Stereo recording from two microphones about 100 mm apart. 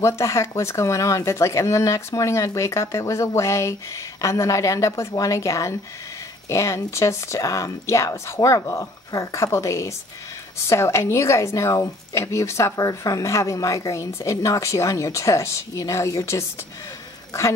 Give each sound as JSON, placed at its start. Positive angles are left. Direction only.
{"t": 0.0, "sound": "speech", "side_deg": 30}